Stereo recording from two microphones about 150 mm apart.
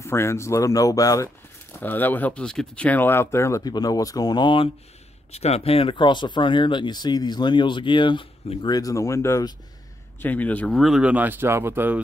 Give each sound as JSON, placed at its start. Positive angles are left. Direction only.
{"t": 0.0, "sound": "speech", "side_deg": 15}
{"t": 5.3, "sound": "speech", "side_deg": 45}
{"t": 10.2, "sound": "speech", "side_deg": 10}